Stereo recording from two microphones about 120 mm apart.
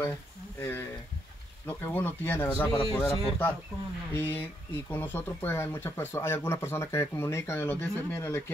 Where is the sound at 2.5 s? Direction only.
25° left (ahead or behind).